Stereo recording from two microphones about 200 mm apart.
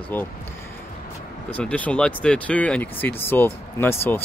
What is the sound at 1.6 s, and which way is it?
Speech, 5° left (ahead or behind).